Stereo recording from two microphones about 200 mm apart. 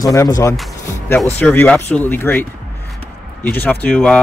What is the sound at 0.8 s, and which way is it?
Music, 10° left (ahead or behind).